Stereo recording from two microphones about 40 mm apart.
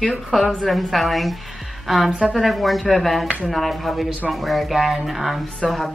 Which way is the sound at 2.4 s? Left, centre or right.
Centre.